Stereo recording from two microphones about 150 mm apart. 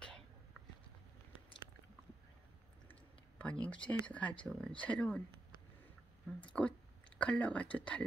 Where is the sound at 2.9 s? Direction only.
10° left (ahead or behind).